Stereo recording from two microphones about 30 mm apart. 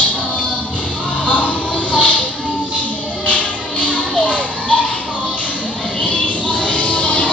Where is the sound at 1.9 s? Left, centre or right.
Left.